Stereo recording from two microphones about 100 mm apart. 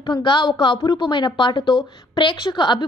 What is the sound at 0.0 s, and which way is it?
A woman's voice, 50° left (ahead or behind).